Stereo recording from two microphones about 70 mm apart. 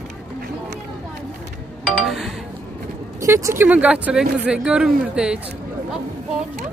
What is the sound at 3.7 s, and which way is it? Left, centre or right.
Speech, right.